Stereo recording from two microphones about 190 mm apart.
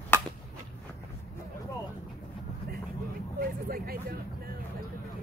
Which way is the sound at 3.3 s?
50° right (ahead or behind).